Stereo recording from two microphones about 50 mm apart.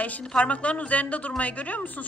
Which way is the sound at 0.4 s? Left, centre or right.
Left.